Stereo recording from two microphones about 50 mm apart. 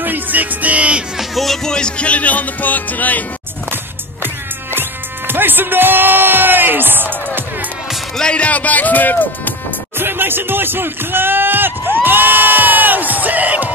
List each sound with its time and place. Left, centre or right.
0.0 s music: right
1.1 s music: centre
1.7 s music: centre; by 3.3 s left
5.3 s speech: right
8.2 s music: left
9.9 s speech: right